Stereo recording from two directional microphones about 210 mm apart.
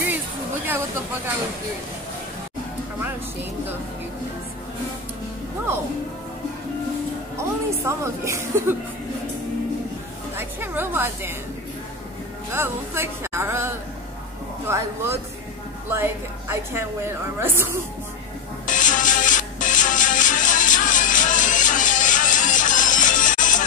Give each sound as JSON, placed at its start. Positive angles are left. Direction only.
{"t": 0.7, "sound": "speech", "side_deg": -10}
{"t": 7.3, "sound": "a woman's voice", "side_deg": -15}
{"t": 10.3, "sound": "a woman's voice", "side_deg": -10}
{"t": 12.5, "sound": "a woman's voice", "side_deg": -10}
{"t": 18.7, "sound": "music", "side_deg": 40}